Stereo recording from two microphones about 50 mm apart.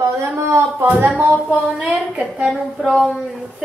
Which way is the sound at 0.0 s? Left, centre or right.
Right.